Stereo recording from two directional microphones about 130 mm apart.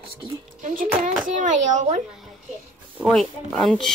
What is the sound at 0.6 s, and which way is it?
Speech, 80° right.